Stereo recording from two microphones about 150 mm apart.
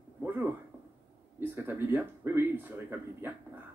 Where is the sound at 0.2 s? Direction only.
15° right (ahead or behind).